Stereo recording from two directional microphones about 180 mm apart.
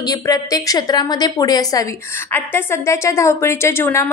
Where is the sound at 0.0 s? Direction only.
20° left (ahead or behind).